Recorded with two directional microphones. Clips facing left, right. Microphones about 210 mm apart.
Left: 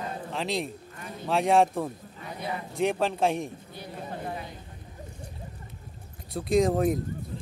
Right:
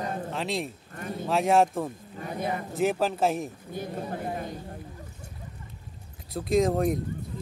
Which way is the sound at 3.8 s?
45° right (ahead or behind).